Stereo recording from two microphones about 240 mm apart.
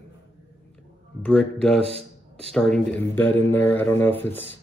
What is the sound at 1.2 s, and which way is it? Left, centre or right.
Speech, centre.